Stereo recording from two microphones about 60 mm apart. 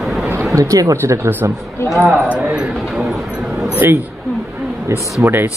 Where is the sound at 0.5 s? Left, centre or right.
Right.